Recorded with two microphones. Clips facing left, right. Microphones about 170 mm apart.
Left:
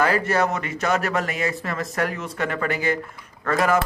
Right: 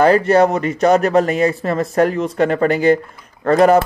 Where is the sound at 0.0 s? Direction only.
30° right (ahead or behind).